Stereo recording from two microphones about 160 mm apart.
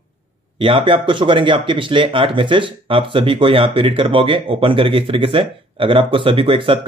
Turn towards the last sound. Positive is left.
turn(degrees=-30)  # may be behind; listen again after turning